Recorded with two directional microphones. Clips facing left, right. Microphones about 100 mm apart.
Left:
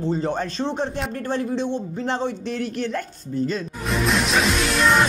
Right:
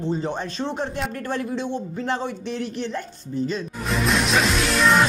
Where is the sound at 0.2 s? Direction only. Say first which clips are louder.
Left 3 dB; 40° left (ahead or behind).